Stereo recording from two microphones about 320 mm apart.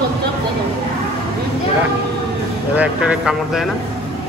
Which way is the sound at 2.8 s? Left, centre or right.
Centre.